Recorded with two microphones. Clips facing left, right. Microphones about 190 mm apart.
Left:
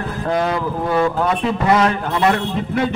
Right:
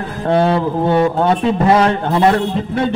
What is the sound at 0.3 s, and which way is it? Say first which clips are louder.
A man's voice: right 6 dB; 30° right (ahead or behind).